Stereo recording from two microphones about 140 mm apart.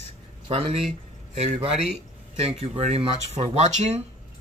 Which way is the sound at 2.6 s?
50° right (ahead or behind).